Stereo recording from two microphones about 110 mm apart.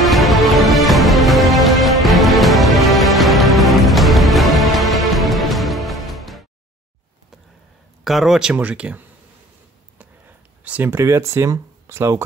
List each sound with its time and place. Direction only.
0.0 s music: centre (ahead or behind)
8.0 s speech: centre (ahead or behind)
10.6 s speech: 15° right (ahead or behind)